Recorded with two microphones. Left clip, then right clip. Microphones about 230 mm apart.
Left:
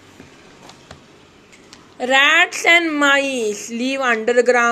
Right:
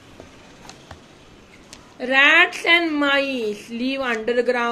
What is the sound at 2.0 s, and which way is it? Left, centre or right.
A woman's voice, left.